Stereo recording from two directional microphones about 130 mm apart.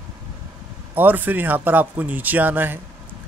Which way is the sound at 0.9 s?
15° right (ahead or behind).